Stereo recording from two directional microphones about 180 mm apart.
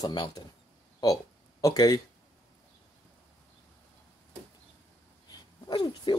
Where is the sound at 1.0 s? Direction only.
20° left (ahead or behind).